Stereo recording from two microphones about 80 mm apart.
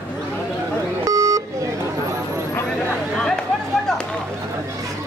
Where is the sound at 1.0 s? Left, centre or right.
Right.